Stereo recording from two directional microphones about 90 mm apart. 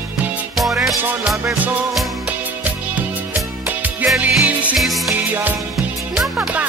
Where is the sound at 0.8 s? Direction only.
Centre (ahead or behind).